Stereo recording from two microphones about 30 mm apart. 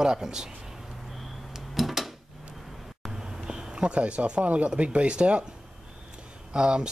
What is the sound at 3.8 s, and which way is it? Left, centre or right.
Speech, right.